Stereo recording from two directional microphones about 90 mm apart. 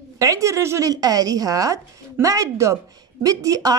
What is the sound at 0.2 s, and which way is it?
A woman's voice, 35° right (ahead or behind).